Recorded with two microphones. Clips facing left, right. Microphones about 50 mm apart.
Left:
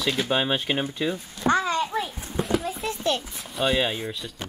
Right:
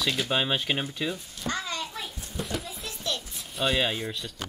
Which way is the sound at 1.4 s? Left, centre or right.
Left.